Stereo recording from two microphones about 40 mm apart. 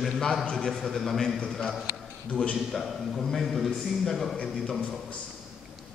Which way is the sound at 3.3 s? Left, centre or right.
Centre.